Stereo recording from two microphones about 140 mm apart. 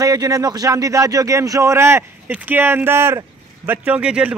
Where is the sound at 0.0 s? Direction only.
25° right (ahead or behind).